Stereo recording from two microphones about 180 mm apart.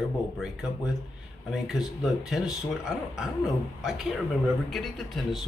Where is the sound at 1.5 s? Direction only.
Centre (ahead or behind).